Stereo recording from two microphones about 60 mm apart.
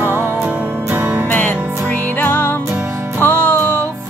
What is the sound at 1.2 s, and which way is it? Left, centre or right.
Music, left.